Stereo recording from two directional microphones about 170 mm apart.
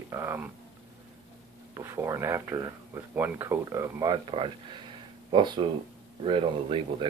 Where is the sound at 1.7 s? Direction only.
15° right (ahead or behind).